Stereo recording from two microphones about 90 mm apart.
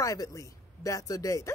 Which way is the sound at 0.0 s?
35° left (ahead or behind).